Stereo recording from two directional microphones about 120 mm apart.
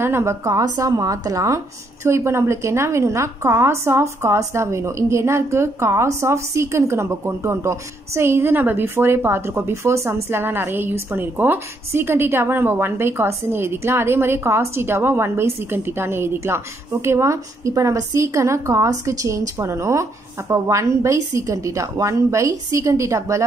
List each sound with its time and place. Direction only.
0.0 s a woman's voice: 20° right (ahead or behind)